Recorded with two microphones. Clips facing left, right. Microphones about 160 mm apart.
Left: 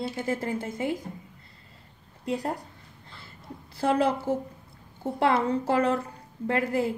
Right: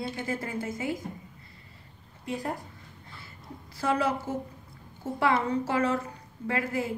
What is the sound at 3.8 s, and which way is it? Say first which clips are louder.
Speech: left 3 dB; 30° left (ahead or behind).